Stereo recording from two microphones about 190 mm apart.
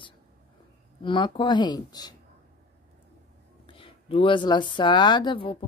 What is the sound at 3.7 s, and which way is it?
Speech, 25° left (ahead or behind).